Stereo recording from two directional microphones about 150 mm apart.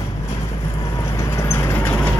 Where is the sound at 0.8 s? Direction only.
25° left (ahead or behind).